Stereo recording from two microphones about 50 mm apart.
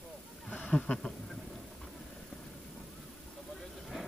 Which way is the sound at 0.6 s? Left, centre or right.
Left.